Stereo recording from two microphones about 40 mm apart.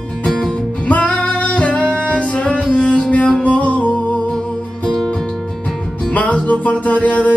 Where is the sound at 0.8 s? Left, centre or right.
Left.